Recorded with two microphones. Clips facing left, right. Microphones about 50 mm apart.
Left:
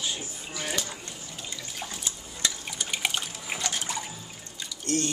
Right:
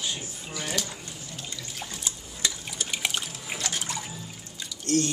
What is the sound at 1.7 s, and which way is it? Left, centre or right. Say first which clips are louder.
Liquid: left 1 dB; centre.